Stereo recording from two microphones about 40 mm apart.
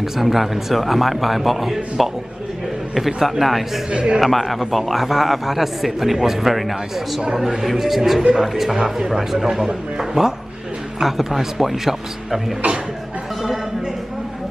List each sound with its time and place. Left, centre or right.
0.0 s a man's voice: centre
3.3 s a man's voice: centre
3.9 s a man's voice: right
4.2 s a man's voice: centre